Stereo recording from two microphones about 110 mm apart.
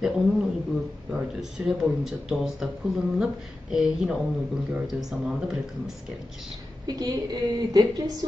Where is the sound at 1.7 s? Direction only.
5° right (ahead or behind).